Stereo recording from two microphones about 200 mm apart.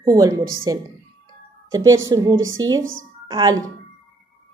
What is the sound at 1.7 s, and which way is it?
Speech, 20° right (ahead or behind).